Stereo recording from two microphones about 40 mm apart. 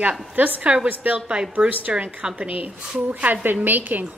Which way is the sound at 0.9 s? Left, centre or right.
Right.